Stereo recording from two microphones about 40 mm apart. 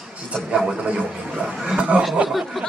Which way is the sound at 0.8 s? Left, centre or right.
Right.